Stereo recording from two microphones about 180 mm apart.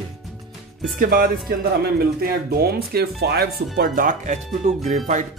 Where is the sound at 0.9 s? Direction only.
55° right (ahead or behind).